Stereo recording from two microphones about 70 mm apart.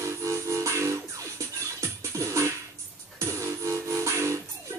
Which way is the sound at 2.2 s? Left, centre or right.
Right.